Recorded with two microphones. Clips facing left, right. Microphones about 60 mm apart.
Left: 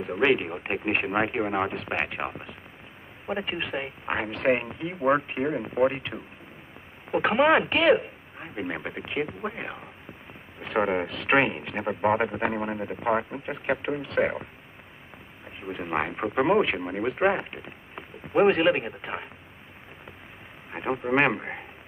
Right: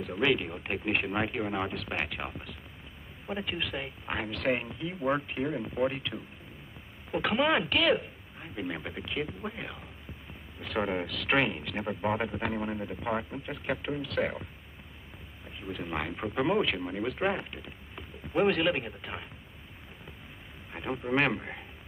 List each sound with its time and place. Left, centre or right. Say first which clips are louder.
0.0 s a man's voice: left 5 dB; left
15.6 s speech: left 6 dB; left
20.7 s a man's voice: left 5 dB; left